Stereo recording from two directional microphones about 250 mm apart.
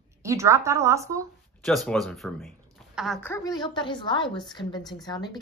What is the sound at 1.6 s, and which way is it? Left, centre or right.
A woman's voice, centre.